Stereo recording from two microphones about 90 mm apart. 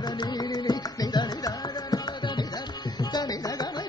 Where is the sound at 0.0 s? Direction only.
50° left (ahead or behind).